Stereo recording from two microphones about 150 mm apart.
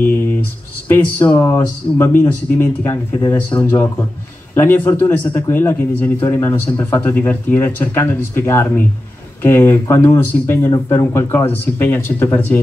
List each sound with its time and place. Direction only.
0.8 s speech: 15° left (ahead or behind)